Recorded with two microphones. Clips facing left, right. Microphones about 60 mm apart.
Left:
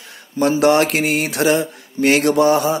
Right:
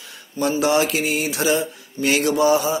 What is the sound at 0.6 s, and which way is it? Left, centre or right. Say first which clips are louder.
Mantra: left 4 dB; left.